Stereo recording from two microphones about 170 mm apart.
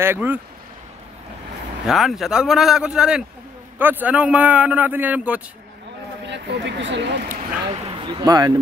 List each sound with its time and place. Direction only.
0.0 s a man's voice: 10° right (ahead or behind)
1.9 s a man's voice: centre (ahead or behind)
6.2 s speech: 90° right
8.1 s speech: 25° right (ahead or behind)